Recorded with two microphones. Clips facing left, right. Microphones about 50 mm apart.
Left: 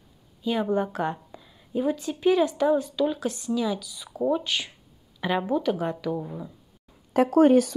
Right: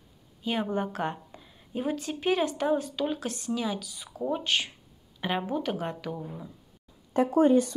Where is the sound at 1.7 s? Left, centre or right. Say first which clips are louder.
Left 6 dB; right.